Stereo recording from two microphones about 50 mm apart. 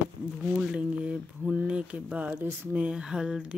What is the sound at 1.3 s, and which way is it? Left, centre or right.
Speech, right.